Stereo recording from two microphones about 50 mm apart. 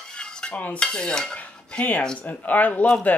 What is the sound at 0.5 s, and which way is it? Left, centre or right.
Dishes, left.